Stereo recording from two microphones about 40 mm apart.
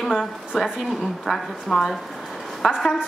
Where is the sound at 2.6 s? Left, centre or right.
Centre.